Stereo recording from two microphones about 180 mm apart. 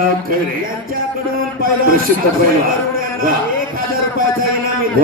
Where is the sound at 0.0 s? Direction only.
50° right (ahead or behind).